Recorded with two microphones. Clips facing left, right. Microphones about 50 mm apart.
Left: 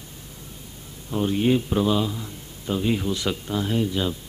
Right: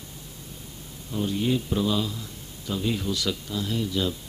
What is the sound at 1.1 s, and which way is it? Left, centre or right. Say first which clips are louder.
A man's voice: left 5 dB; left.